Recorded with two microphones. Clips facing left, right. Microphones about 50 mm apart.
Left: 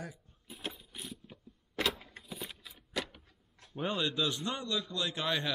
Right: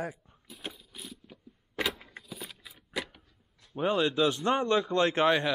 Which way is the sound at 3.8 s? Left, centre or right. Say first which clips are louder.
Right 7 dB; right.